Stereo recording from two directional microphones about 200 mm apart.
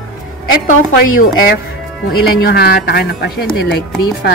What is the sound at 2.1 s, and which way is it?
A woman's voice, 50° left (ahead or behind).